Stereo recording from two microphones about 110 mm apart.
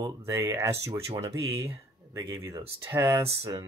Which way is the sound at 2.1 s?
35° right (ahead or behind).